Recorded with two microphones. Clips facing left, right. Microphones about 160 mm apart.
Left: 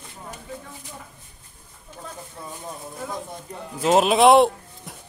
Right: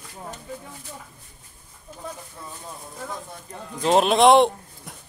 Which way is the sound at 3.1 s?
15° left (ahead or behind).